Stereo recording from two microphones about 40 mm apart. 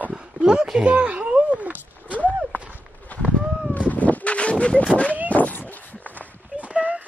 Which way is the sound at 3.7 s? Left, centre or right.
Left.